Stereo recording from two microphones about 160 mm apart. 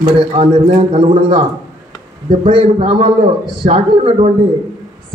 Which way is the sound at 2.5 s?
35° right (ahead or behind).